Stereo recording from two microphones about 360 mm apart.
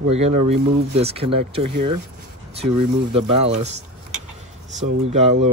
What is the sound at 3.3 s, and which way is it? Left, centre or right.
Speech, centre.